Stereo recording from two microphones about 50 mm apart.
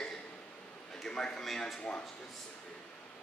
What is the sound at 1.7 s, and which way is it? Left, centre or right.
Speech, left.